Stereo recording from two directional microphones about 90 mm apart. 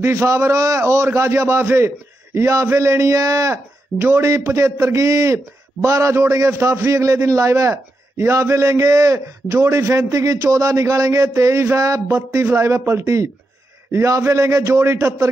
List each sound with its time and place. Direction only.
0.0 s speech: 30° right (ahead or behind)